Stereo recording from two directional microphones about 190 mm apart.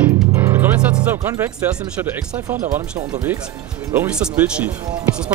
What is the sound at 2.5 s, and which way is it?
Speech, 45° right (ahead or behind).